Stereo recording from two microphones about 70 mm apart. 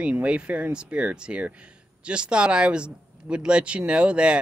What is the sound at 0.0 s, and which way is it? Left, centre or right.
Speech, centre.